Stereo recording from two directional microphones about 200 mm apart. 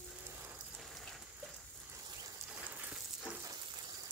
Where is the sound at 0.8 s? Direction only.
Centre (ahead or behind).